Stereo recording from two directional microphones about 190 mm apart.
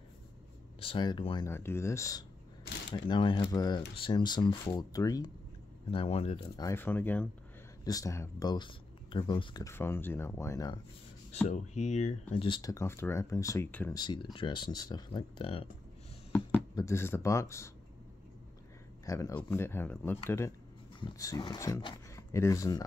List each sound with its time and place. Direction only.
0.7 s speech: 25° left (ahead or behind)
1.5 s speech: 10° left (ahead or behind)
5.9 s speech: 30° left (ahead or behind)
6.5 s speech: 15° left (ahead or behind)
11.4 s speech: 35° left (ahead or behind); by 13.9 s 10° left (ahead or behind)
13.9 s speech: 20° left (ahead or behind)
16.3 s speech: 10° left (ahead or behind)
19.0 s speech: 15° left (ahead or behind)